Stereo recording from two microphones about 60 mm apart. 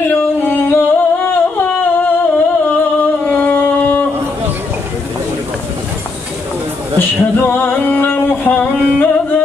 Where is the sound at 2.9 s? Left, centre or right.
Left.